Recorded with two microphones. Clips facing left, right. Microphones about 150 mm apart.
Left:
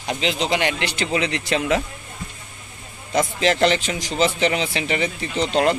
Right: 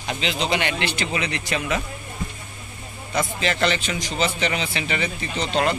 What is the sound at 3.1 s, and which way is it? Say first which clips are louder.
Speech: left 5 dB; 30° left (ahead or behind).